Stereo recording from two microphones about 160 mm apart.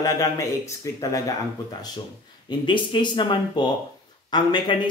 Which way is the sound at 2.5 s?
30° left (ahead or behind).